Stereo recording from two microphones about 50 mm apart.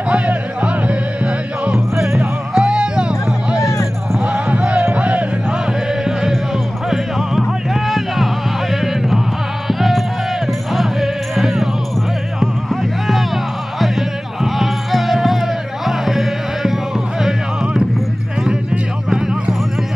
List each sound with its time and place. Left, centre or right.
0.1 s music: right
6.9 s music: centre
9.7 s music: centre
13.7 s music: centre